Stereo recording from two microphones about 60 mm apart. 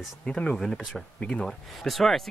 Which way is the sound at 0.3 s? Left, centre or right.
Centre.